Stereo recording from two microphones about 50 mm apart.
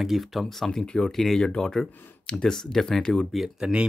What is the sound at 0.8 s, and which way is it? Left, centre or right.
Speech, centre.